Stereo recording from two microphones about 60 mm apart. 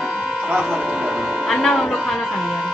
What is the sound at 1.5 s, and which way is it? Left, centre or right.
Music, centre.